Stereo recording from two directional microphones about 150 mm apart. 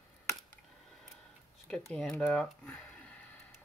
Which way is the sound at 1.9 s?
5° left (ahead or behind).